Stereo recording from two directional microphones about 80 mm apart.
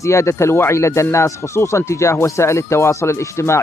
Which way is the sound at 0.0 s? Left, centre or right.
Left.